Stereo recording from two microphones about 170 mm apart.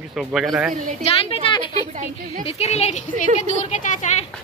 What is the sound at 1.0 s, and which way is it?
Speech, 35° left (ahead or behind).